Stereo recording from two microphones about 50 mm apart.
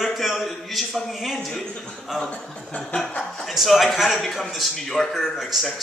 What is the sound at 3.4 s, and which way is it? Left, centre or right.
Speech, centre.